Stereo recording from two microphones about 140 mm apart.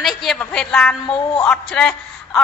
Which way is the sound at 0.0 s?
Centre (ahead or behind).